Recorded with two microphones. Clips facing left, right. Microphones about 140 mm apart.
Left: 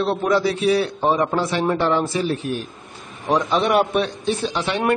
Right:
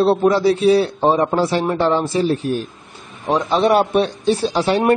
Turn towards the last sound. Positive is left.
turn(degrees=-35)  # may be behind; listen again after turning